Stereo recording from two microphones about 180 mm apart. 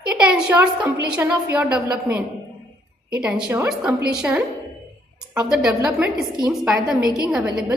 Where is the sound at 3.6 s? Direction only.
5° right (ahead or behind).